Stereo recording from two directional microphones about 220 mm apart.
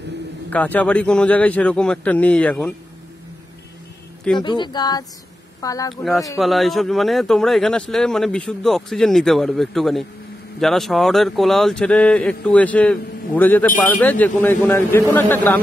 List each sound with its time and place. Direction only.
0.5 s speech: 5° left (ahead or behind)
4.4 s speech: 20° left (ahead or behind)
6.3 s speech: centre (ahead or behind)